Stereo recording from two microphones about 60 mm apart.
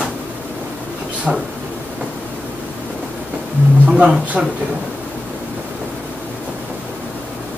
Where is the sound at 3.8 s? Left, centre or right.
Right.